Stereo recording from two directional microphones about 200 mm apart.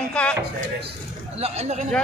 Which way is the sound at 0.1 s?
5° left (ahead or behind).